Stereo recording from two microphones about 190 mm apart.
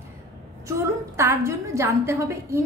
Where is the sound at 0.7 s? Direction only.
15° right (ahead or behind).